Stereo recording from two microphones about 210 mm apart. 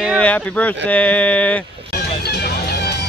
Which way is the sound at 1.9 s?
50° left (ahead or behind).